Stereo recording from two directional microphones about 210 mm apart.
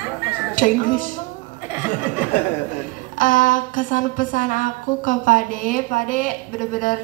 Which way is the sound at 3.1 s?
40° left (ahead or behind).